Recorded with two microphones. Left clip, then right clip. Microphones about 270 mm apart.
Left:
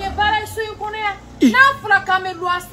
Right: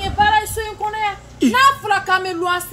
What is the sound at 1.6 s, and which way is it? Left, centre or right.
A woman's voice, right.